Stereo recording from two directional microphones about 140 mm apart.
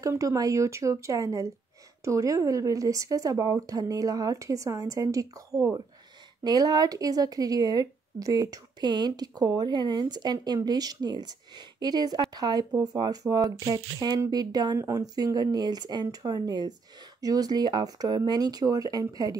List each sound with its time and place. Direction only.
0.0 s speech: 20° right (ahead or behind)